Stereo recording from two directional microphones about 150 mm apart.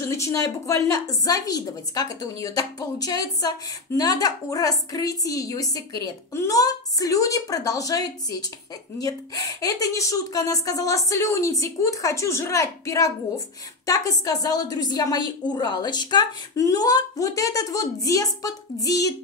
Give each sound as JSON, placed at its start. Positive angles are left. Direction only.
{"t": 0.0, "sound": "a woman's voice", "side_deg": 20}